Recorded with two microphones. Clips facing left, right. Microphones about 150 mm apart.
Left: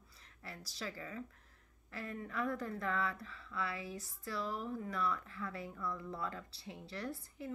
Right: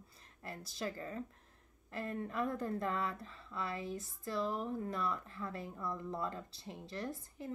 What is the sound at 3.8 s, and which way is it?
Speech, 50° right (ahead or behind).